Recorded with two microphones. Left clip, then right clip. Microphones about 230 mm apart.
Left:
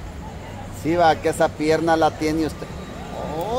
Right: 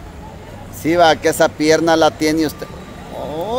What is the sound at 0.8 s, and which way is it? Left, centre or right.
Speech, right.